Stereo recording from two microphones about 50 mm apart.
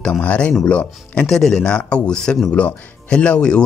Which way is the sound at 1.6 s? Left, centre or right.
Left.